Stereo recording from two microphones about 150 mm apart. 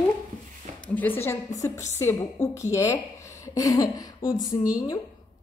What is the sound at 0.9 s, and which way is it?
Speech, 15° left (ahead or behind).